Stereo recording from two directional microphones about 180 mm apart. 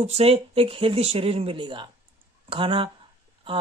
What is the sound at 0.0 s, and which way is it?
Speech, 35° right (ahead or behind).